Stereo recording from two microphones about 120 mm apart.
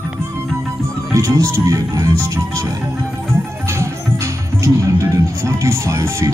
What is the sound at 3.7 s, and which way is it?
Music, 25° right (ahead or behind).